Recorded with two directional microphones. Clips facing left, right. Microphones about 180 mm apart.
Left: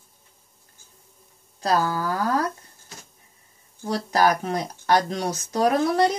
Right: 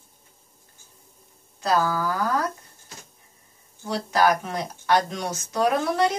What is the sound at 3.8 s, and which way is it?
A woman's voice, 40° left (ahead or behind).